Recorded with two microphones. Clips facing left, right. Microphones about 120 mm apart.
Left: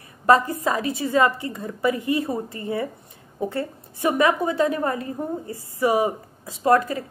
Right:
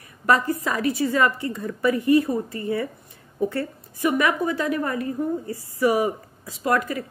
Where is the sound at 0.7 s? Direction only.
20° left (ahead or behind).